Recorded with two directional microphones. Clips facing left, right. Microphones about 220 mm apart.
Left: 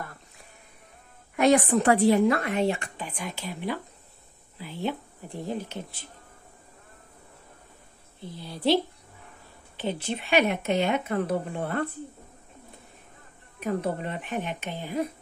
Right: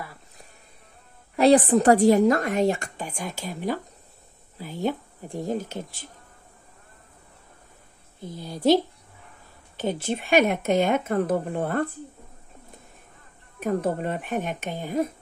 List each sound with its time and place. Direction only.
1.3 s speech: 35° right (ahead or behind)
8.2 s speech: 45° right (ahead or behind)
13.6 s speech: 45° right (ahead or behind)